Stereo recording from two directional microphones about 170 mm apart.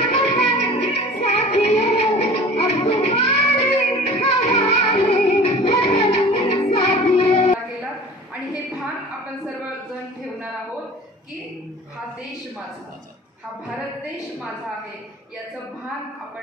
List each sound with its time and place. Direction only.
0.1 s music: 40° left (ahead or behind)